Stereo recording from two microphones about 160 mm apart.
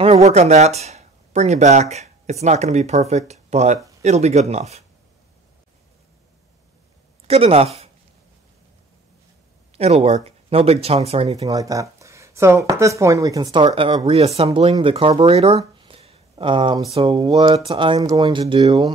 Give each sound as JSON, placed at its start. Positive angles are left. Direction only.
{"t": 0.0, "sound": "speech", "side_deg": -40}
{"t": 7.2, "sound": "speech", "side_deg": -40}
{"t": 9.8, "sound": "speech", "side_deg": -40}
{"t": 11.4, "sound": "speech", "side_deg": -20}